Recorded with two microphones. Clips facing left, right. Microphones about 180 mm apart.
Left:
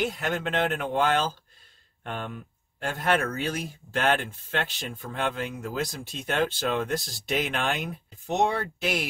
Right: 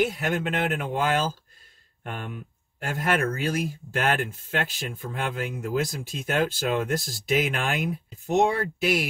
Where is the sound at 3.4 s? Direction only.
10° right (ahead or behind).